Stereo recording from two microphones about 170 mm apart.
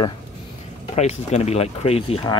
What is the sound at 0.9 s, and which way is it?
Speech, 40° left (ahead or behind).